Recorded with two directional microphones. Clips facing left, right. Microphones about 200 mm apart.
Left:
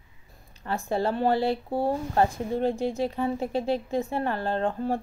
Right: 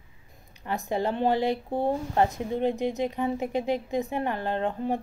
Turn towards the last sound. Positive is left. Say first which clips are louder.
# left 1 dB
turn(degrees=-15)  # may be behind; listen again after turning